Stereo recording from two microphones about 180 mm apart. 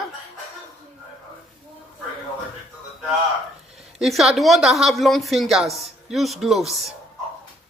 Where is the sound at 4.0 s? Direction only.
Centre (ahead or behind).